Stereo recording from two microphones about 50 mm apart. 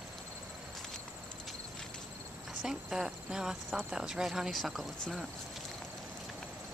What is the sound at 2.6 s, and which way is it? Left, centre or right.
Speech, centre.